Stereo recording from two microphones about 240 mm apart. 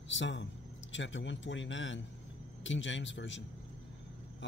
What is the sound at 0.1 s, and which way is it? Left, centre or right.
Speech, left.